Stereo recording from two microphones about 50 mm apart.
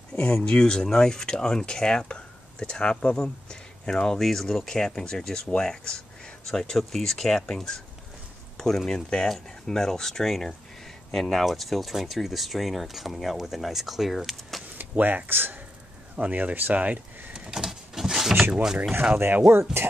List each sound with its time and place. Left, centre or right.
0.1 s speech: centre
14.8 s speech: right
16.2 s speech: right
17.5 s a sound: centre
18.5 s speech: centre
19.1 s speech: right